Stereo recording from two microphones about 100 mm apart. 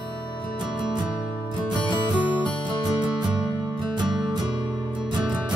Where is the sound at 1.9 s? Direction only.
55° left (ahead or behind).